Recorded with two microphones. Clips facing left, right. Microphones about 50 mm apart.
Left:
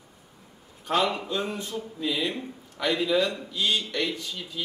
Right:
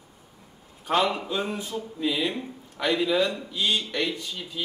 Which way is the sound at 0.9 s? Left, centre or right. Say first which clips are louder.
Right 1 dB; centre.